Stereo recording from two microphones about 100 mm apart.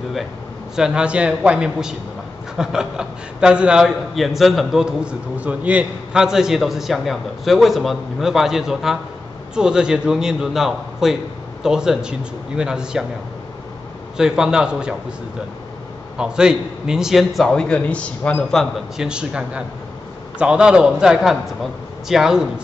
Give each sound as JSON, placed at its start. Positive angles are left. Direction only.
{"t": 0.7, "sound": "a man's voice", "side_deg": -5}
{"t": 14.1, "sound": "a man's voice", "side_deg": -5}
{"t": 16.2, "sound": "a man's voice", "side_deg": -10}
{"t": 18.9, "sound": "a man's voice", "side_deg": -10}